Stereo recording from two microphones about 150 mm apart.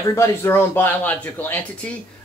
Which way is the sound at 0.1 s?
20° left (ahead or behind).